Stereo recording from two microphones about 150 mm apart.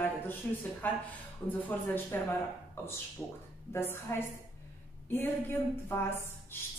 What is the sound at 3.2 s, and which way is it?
Speech, 5° left (ahead or behind).